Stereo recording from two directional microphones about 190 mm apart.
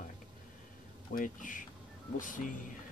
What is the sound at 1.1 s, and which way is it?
Speech, 45° left (ahead or behind).